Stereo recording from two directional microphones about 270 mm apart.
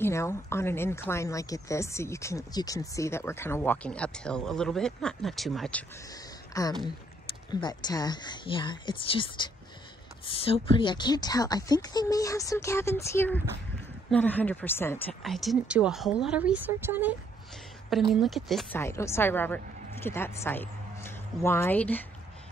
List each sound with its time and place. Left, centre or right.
0.0 s a woman's voice: centre